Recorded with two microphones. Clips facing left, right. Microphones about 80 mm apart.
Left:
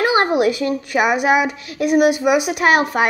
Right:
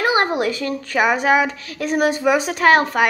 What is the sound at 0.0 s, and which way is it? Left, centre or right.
A woman's voice, left.